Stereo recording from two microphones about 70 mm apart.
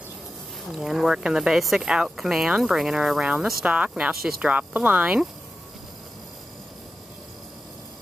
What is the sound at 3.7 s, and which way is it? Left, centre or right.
Speech, centre.